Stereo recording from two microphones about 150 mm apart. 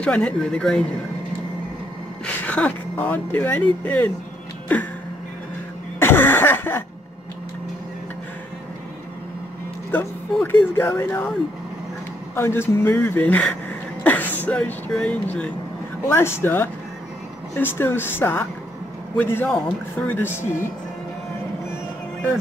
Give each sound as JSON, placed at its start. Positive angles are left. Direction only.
{"t": 0.0, "sound": "speech", "side_deg": 5}
{"t": 2.2, "sound": "speech", "side_deg": 10}
{"t": 4.7, "sound": "a sound", "side_deg": 10}
{"t": 5.9, "sound": "cough", "side_deg": 15}
{"t": 9.8, "sound": "speech", "side_deg": 15}
{"t": 12.4, "sound": "speech", "side_deg": 15}